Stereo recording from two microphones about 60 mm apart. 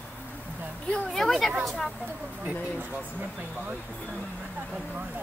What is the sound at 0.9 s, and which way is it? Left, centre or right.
Speech, centre.